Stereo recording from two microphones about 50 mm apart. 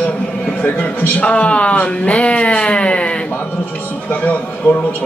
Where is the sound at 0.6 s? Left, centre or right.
Left.